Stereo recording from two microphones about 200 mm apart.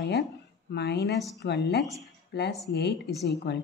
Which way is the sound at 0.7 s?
55° left (ahead or behind).